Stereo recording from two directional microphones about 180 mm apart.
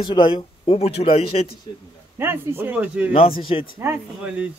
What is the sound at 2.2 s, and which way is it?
Speech, 15° right (ahead or behind).